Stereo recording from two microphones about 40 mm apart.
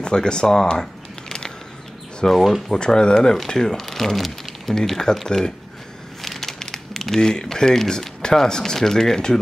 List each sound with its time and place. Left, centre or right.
0.0 s speech: left
2.2 s speech: centre
2.8 s speech: left
3.2 s speech: centre
6.2 s crumpling: centre
7.2 s speech: centre